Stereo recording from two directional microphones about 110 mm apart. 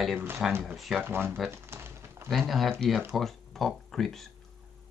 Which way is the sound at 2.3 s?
Centre (ahead or behind).